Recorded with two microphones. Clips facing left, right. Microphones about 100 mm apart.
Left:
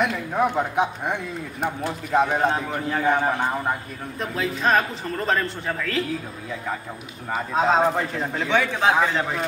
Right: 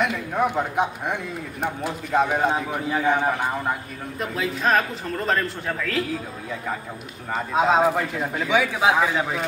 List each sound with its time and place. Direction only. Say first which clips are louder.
0.0 s speech: left 1 dB; centre (ahead or behind)
7.3 s speech: right 1 dB; 5° right (ahead or behind)